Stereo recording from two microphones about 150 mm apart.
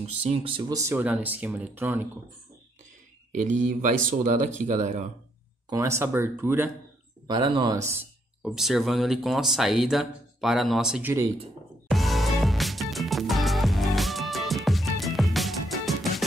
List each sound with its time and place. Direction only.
0.0 s speech: 40° right (ahead or behind)
0.7 s speech: 15° right (ahead or behind)
3.3 s speech: 55° right (ahead or behind)
5.7 s speech: 20° right (ahead or behind)
7.2 s speech: 30° right (ahead or behind)
8.4 s speech: centre (ahead or behind)
11.9 s music: centre (ahead or behind)